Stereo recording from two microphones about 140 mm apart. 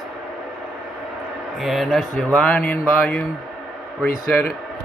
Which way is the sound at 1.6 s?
Centre (ahead or behind).